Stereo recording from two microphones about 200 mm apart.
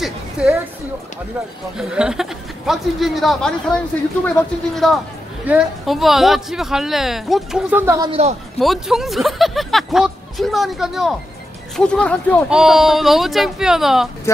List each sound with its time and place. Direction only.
0.0 s a sound: centre (ahead or behind)
1.8 s speech: 5° right (ahead or behind)
8.1 s speech: 30° right (ahead or behind)
8.5 s speech: centre (ahead or behind)
12.4 s speech: 5° right (ahead or behind)